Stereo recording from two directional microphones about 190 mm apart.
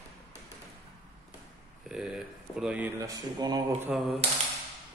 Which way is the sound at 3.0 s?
20° right (ahead or behind).